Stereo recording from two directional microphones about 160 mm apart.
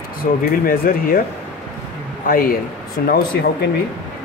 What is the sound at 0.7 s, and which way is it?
Speech, 65° left (ahead or behind).